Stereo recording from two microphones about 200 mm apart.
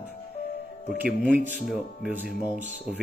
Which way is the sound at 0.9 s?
5° right (ahead or behind).